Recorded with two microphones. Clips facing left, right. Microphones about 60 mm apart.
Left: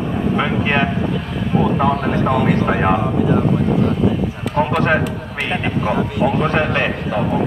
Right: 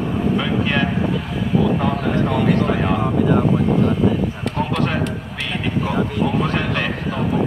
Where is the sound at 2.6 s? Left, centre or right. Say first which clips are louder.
Left 3 dB; left.